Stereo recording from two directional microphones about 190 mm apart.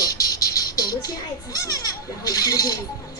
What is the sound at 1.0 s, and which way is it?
A child's voice, 20° left (ahead or behind).